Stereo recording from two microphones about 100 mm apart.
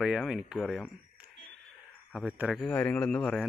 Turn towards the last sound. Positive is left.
turn(degrees=10)  # may be behind; listen again after turning